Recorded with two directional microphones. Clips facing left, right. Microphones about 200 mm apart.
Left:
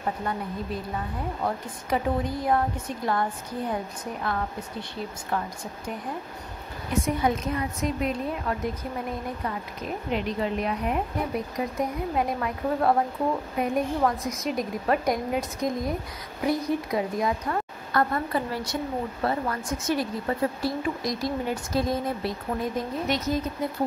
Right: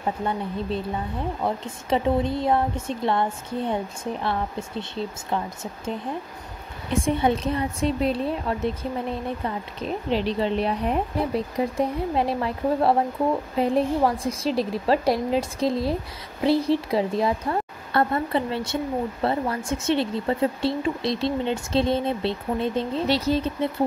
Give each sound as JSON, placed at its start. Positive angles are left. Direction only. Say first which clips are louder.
{"t": 0.2, "sound": "a woman's voice", "louder": "right 3 dB", "side_deg": -25}